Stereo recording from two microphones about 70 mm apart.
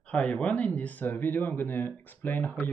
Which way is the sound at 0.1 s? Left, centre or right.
Centre.